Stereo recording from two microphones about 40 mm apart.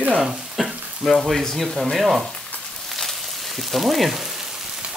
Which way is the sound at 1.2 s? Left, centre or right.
Centre.